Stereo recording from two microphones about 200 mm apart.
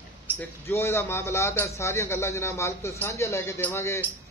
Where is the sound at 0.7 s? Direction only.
15° left (ahead or behind).